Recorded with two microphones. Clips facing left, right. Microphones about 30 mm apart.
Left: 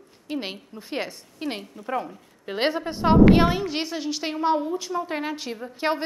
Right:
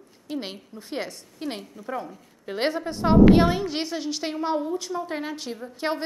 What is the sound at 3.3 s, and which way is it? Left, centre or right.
A woman's voice, centre.